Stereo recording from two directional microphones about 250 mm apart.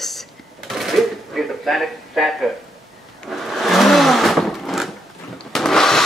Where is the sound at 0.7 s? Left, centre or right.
Centre.